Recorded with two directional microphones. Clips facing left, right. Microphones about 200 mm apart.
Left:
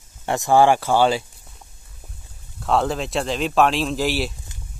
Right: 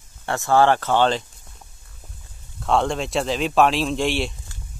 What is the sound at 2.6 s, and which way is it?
Speech, centre (ahead or behind).